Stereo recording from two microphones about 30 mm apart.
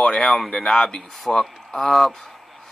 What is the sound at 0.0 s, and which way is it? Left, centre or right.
Speech, left.